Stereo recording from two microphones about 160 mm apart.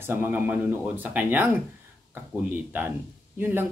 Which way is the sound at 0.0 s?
15° right (ahead or behind).